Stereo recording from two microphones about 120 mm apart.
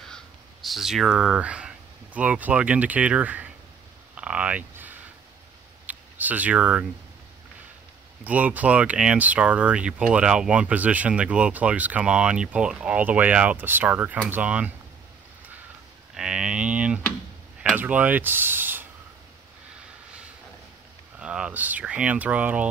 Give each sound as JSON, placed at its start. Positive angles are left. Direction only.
{"t": 0.0, "sound": "speech", "side_deg": 0}
{"t": 4.1, "sound": "a sound", "side_deg": -10}
{"t": 5.9, "sound": "speech", "side_deg": -15}
{"t": 8.2, "sound": "speech", "side_deg": -15}
{"t": 16.2, "sound": "speech", "side_deg": -5}
{"t": 21.2, "sound": "speech", "side_deg": -10}